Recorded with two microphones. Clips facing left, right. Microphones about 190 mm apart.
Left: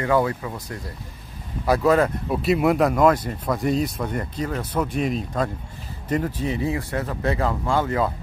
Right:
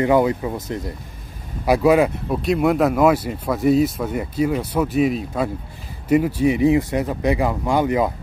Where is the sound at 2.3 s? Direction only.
Centre (ahead or behind).